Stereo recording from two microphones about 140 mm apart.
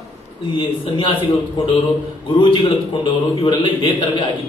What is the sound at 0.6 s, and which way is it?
A man's voice, 35° left (ahead or behind).